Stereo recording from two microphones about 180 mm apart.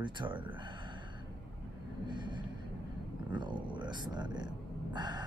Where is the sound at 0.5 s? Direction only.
25° right (ahead or behind).